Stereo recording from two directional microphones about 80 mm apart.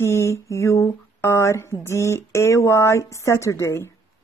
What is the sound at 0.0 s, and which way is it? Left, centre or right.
A woman's voice, left.